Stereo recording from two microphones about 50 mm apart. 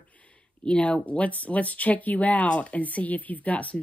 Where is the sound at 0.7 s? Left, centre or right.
Left.